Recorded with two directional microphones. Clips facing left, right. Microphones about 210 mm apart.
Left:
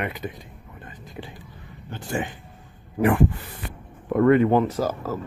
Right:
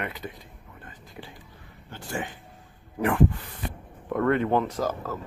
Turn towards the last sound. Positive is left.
turn(degrees=5)  # may be behind; listen again after turning